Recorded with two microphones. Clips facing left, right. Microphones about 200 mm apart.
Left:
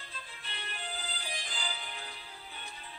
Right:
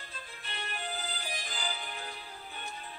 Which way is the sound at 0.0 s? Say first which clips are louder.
Right 2 dB; 45° right (ahead or behind).